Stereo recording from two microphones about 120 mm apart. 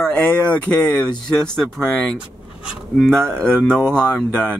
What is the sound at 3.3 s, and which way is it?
Speech, 5° left (ahead or behind).